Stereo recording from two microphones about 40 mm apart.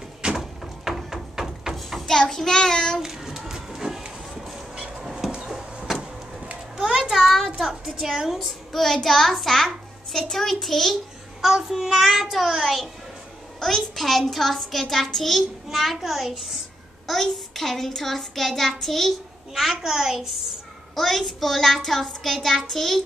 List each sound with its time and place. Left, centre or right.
0.2 s door: right
0.8 s a sound: centre
2.0 s child singing: centre
3.0 s a sound: centre
7.1 s a child's voice: centre
8.4 s a child's voice: centre
10.1 s child singing: centre
11.7 s a child's voice: centre
13.6 s a child's voice: centre
19.5 s a woman's voice: centre
20.9 s a child's voice: centre